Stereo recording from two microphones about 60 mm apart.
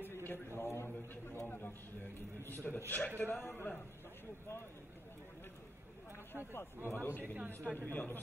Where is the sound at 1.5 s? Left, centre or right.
Left.